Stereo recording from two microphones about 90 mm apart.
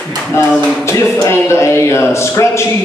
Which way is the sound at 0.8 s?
30° left (ahead or behind).